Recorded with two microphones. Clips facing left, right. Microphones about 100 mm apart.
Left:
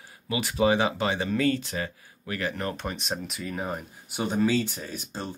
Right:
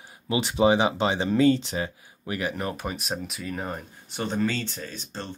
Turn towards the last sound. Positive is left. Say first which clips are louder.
# left 1 dB
turn(degrees=10)  # may be behind; listen again after turning